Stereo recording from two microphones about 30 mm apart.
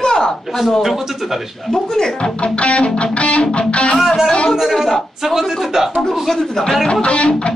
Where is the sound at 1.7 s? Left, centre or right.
Left.